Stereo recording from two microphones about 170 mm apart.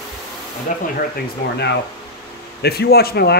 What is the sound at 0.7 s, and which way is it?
Speech, 50° left (ahead or behind).